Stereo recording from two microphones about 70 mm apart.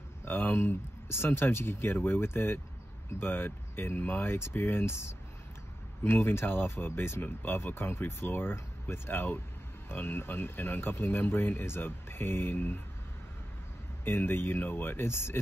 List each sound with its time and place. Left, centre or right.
0.2 s speech: left
14.0 s speech: left